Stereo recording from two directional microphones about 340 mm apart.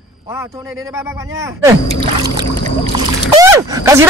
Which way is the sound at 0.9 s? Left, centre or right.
Centre.